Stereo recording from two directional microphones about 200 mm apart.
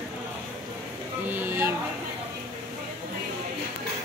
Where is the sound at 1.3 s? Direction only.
10° right (ahead or behind).